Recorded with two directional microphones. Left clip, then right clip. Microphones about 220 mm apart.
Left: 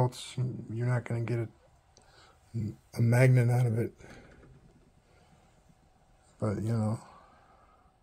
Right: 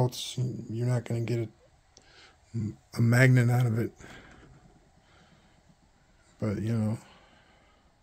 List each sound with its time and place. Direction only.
0.0 s a man's voice: 15° right (ahead or behind)
6.4 s speech: 15° right (ahead or behind)